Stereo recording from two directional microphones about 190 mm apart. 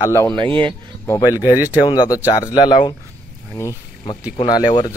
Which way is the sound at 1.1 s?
20° left (ahead or behind).